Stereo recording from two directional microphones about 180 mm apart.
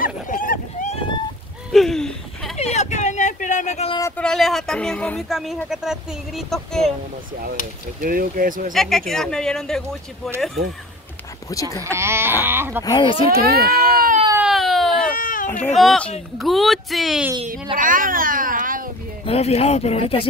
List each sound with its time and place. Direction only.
0.0 s boat: 50° left (ahead or behind)
1.7 s a sound: centre (ahead or behind)
2.5 s a sound: 40° left (ahead or behind)
4.2 s speech: centre (ahead or behind)
8.0 s speech: 50° right (ahead or behind)
8.7 s speech: centre (ahead or behind)
11.8 s speech: 15° right (ahead or behind)
12.8 s speech: 25° left (ahead or behind)
13.4 s speech: 55° right (ahead or behind)
14.3 s a sound: 5° right (ahead or behind)
15.1 s baby cry: 50° left (ahead or behind)
15.6 s speech: centre (ahead or behind)
17.7 s speech: 50° right (ahead or behind)
19.2 s speech: 35° left (ahead or behind)